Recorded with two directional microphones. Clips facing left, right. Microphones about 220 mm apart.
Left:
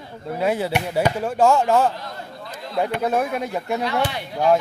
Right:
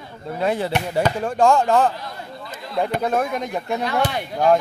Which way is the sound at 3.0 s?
5° left (ahead or behind).